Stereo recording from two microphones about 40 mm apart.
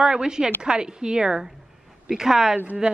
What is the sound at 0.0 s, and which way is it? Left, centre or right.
Speech, centre.